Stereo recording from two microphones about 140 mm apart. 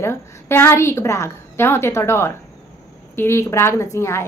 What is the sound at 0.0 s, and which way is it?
A woman's voice, 15° left (ahead or behind).